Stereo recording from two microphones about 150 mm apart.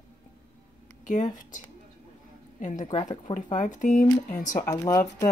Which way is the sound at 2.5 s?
55° left (ahead or behind).